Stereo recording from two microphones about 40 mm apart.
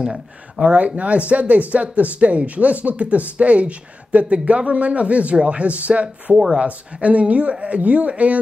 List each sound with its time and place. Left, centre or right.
0.0 s speech: centre
0.7 s speech: right